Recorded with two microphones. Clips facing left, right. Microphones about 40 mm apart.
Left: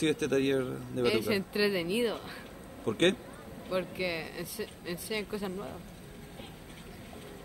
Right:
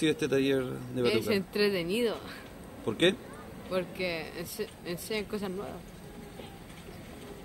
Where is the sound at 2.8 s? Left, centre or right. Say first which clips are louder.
Even; centre.